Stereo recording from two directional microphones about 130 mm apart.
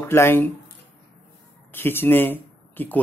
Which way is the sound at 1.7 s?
15° left (ahead or behind).